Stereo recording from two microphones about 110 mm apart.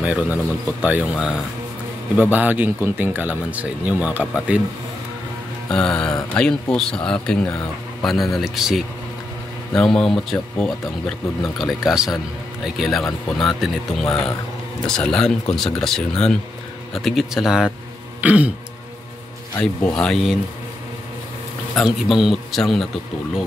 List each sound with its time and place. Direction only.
0.0 s speech: 10° right (ahead or behind)
5.7 s speech: 5° left (ahead or behind)
18.2 s throat clearing: 15° right (ahead or behind)
19.6 s speech: 5° left (ahead or behind)
21.7 s speech: 5° right (ahead or behind)